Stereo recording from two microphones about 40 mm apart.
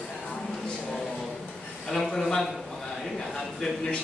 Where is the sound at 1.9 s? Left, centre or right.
Centre.